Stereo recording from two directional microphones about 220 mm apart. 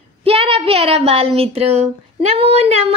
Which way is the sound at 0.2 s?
25° right (ahead or behind).